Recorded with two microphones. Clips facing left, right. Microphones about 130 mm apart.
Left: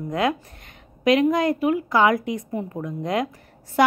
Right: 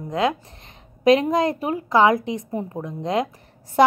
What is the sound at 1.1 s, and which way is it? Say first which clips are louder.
A woman's voice: right 1 dB; 30° right (ahead or behind).